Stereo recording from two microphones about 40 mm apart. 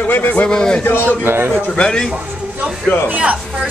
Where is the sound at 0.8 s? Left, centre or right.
Left.